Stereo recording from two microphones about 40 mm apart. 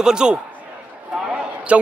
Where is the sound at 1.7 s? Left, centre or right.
Right.